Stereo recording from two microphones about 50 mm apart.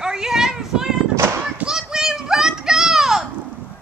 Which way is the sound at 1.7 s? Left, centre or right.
Centre.